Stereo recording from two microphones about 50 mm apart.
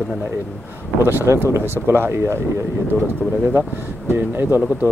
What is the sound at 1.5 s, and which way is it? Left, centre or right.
Speech, right.